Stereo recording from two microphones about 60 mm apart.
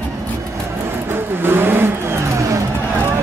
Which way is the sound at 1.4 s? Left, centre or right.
Right.